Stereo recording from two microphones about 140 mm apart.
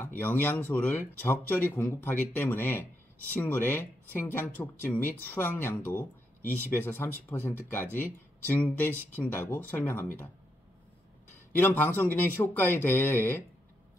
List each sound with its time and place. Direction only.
0.0 s speech: 15° left (ahead or behind)
11.5 s speech: 15° left (ahead or behind)